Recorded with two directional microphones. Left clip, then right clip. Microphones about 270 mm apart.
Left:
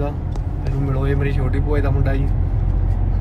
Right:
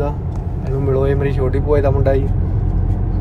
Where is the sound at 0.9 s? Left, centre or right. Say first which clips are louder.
Right 6 dB; centre.